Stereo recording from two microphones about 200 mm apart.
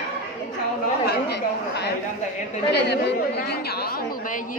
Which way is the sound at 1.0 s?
55° left (ahead or behind).